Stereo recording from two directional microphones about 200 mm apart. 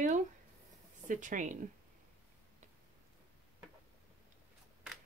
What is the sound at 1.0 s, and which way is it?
Speech, 40° right (ahead or behind).